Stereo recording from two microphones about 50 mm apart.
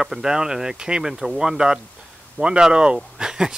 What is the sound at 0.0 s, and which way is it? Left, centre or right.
Speech, centre.